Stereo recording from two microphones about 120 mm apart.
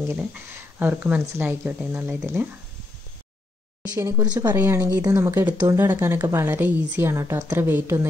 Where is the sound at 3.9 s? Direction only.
25° right (ahead or behind).